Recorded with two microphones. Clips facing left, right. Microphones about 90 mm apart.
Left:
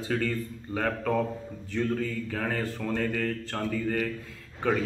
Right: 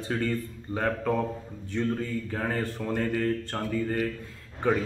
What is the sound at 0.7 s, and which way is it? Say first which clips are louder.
Speech: even; 15° right (ahead or behind).